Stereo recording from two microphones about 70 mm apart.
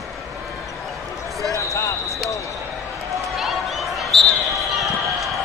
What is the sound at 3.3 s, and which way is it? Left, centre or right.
Basketball bounce, centre.